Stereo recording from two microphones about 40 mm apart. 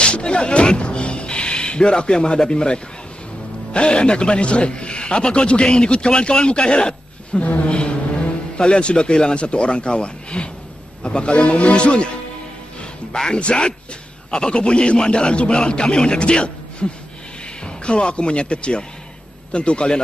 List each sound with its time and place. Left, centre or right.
0.0 s a man's voice: left
7.4 s a sound: left
8.5 s a man's voice: left
13.1 s a man's voice: left